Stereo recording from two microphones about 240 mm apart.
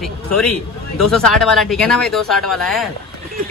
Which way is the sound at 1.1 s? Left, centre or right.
Centre.